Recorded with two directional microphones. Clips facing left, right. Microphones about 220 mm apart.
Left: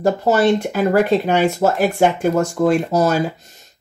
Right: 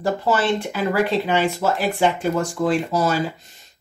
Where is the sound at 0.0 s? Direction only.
45° left (ahead or behind).